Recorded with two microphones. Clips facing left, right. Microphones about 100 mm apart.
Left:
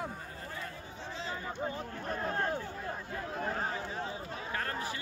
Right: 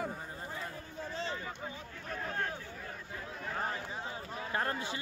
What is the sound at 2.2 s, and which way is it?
Speech, 35° left (ahead or behind).